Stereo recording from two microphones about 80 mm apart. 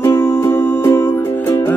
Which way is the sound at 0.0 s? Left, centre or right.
Left.